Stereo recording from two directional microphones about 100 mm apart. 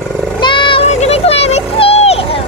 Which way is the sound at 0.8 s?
90° left.